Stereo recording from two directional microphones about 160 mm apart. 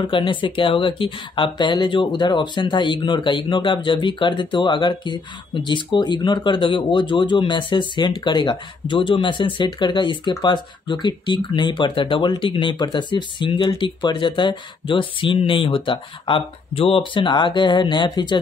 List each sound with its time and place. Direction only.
0.0 s speech: 30° left (ahead or behind)